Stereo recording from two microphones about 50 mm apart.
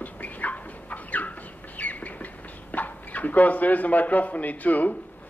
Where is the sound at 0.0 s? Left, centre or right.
Left.